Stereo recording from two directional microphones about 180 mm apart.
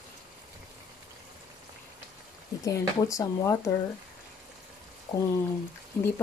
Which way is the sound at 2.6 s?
20° left (ahead or behind).